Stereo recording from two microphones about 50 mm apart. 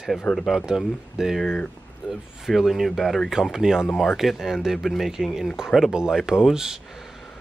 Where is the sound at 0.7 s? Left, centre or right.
Centre.